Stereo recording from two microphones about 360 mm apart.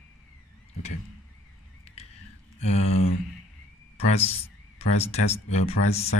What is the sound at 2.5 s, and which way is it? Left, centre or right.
Speech, centre.